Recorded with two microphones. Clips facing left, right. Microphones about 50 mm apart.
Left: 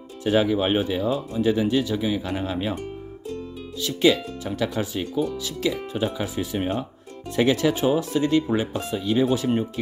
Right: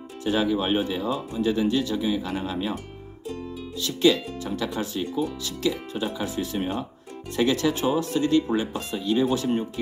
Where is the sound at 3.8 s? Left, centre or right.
Centre.